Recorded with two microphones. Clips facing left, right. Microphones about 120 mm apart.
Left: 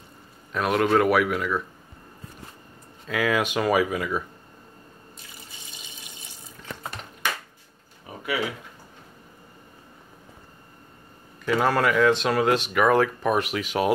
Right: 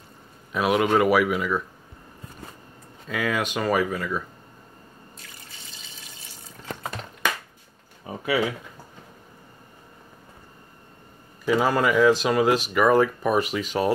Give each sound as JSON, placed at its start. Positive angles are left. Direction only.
{"t": 0.5, "sound": "speech", "side_deg": -5}
{"t": 3.1, "sound": "speech", "side_deg": 0}
{"t": 5.8, "sound": "water tap", "side_deg": 20}
{"t": 11.4, "sound": "speech", "side_deg": -5}